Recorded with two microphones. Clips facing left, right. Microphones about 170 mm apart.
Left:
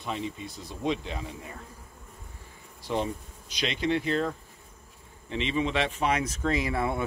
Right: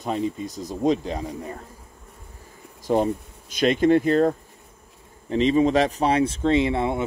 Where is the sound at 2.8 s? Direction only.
45° right (ahead or behind).